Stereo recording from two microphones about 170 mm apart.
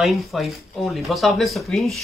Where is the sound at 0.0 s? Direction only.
Centre (ahead or behind).